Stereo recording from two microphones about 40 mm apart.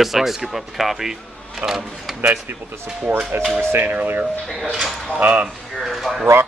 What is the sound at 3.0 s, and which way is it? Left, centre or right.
Speech, right.